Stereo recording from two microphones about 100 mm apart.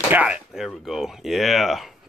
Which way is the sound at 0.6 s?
Centre (ahead or behind).